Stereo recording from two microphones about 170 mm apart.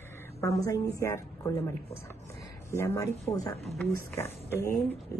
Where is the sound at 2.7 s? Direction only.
15° left (ahead or behind).